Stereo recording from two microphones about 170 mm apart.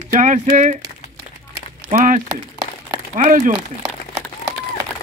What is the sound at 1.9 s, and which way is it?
Speech, 45° right (ahead or behind).